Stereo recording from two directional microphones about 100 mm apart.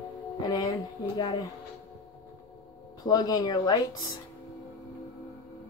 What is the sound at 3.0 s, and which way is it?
Speech, 40° left (ahead or behind).